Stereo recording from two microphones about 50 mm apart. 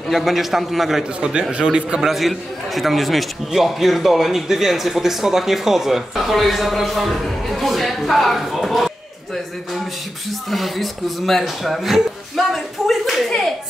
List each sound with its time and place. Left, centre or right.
0.1 s a man's voice: centre
1.2 s a man's voice: centre
2.0 s a man's voice: centre
10.5 s a man's voice: centre